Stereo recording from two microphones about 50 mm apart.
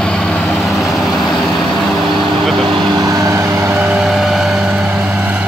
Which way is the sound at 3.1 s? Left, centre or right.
Right.